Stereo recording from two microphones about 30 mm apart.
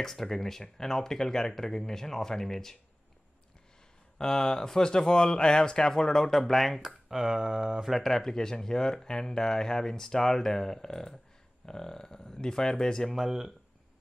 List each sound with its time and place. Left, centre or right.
0.0 s speech: centre
4.2 s speech: left
6.8 s speech: centre
8.1 s speech: centre
13.1 s speech: centre